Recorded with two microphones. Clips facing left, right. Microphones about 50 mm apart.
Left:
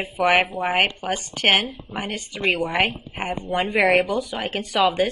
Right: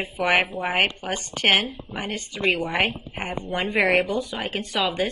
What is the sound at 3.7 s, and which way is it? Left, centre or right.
A woman's voice, left.